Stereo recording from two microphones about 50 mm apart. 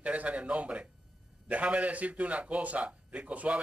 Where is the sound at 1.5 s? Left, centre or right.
Right.